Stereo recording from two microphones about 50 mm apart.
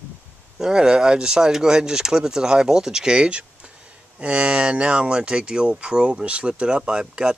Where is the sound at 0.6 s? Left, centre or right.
Centre.